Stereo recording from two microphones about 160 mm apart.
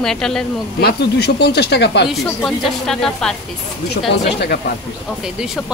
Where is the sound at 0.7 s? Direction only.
85° left.